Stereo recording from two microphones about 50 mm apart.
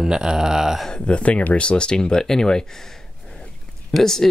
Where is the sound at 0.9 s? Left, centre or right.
Left.